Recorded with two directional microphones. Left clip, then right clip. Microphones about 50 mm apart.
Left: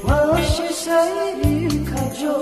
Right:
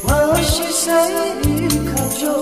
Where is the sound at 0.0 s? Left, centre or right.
Centre.